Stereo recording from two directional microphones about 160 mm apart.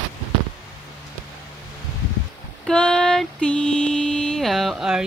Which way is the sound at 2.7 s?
5° left (ahead or behind).